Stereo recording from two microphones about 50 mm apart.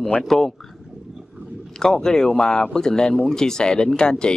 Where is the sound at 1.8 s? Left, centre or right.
Centre.